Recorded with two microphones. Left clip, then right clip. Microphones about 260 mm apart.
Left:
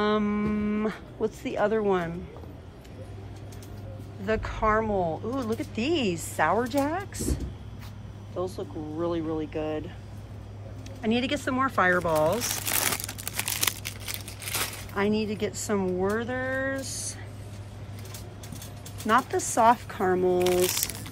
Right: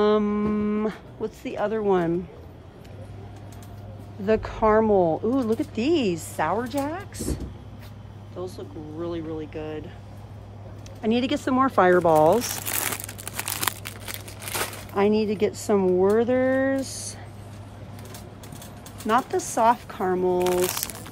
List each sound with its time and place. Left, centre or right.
0.0 s livestock: centre
4.3 s speech: centre
8.4 s speech: centre
11.0 s speech: centre
13.4 s crumpling: right
19.0 s speech: centre